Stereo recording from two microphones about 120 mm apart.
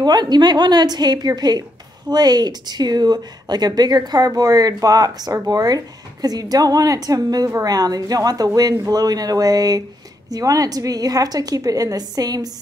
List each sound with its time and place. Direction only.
0.0 s speech: 35° right (ahead or behind)